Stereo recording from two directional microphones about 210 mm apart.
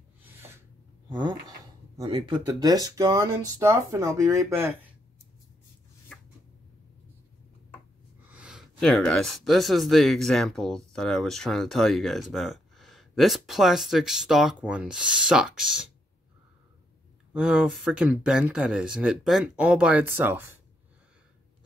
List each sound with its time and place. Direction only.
2.0 s speech: 20° right (ahead or behind)
6.1 s a sound: 5° left (ahead or behind)
8.2 s speech: 5° right (ahead or behind)
17.3 s speech: 5° right (ahead or behind)